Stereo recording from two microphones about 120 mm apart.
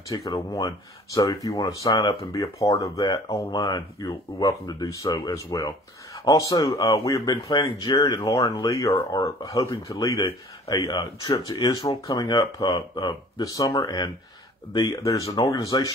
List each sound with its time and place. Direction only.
0.1 s speech: 30° left (ahead or behind)
11.0 s speech: 40° left (ahead or behind)